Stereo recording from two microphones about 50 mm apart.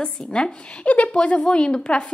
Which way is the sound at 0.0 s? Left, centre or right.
Centre.